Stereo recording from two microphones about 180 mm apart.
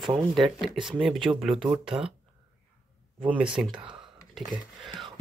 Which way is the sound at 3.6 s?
25° right (ahead or behind).